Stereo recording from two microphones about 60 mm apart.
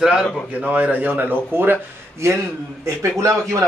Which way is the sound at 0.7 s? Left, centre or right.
Right.